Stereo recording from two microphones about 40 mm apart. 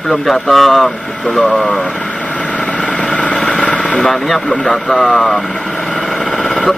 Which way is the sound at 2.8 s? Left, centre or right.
Centre.